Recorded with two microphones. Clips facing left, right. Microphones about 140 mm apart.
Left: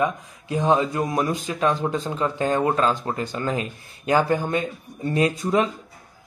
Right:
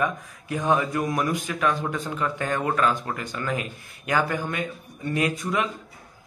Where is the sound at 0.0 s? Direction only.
25° left (ahead or behind).